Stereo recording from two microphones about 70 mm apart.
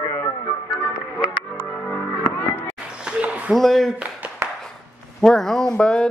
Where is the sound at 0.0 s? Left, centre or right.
Left.